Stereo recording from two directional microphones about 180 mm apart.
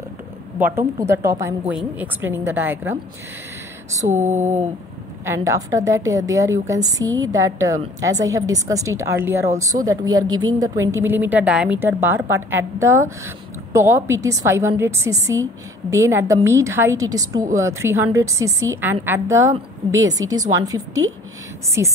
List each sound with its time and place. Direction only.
0.6 s a woman's voice: 10° right (ahead or behind)
4.2 s a sound: 40° right (ahead or behind)
5.2 s a woman's voice: 15° right (ahead or behind)